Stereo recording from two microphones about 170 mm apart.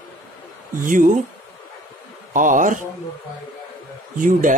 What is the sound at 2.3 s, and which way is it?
Speech, 50° right (ahead or behind).